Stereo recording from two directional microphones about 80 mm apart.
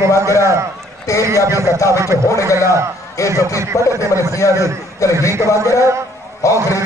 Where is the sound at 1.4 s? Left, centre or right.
Right.